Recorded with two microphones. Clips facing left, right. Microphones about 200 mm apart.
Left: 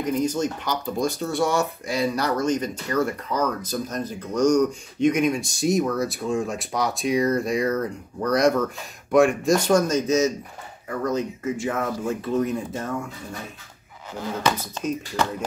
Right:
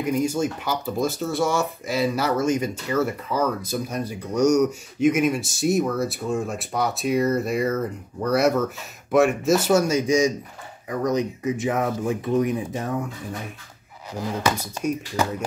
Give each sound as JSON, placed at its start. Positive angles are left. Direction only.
{"t": 0.0, "sound": "speech", "side_deg": -10}
{"t": 14.1, "sound": "speech", "side_deg": -10}